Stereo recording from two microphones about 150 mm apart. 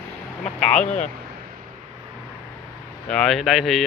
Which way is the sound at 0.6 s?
5° left (ahead or behind).